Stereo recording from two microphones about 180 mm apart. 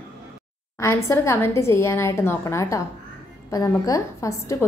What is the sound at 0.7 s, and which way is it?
A woman's voice, 15° left (ahead or behind).